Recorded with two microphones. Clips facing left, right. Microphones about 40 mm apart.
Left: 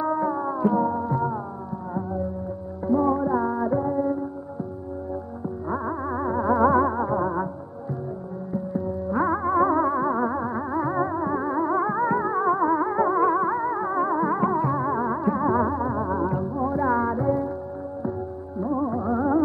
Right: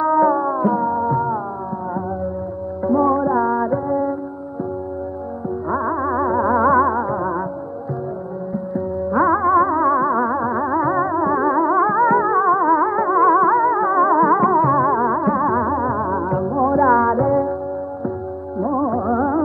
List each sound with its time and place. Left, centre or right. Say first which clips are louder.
0.0 s music: right 9 dB; right
2.8 s music: right 5 dB; right
5.7 s music: right 8 dB; right
8.7 s music: right 7 dB; centre
18.6 s music: right 6 dB; right